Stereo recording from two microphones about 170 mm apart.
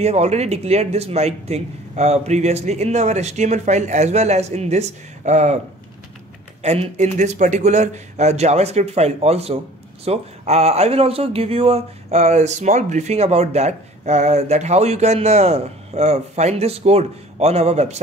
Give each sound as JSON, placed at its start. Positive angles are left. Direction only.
{"t": 0.0, "sound": "speech", "side_deg": -40}
{"t": 6.6, "sound": "speech", "side_deg": -40}